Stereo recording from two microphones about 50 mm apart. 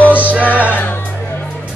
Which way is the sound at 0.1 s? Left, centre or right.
Right.